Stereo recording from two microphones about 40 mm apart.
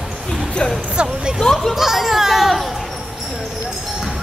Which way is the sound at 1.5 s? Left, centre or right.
Centre.